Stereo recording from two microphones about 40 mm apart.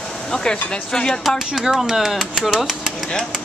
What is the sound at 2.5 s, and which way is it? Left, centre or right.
Speech, centre.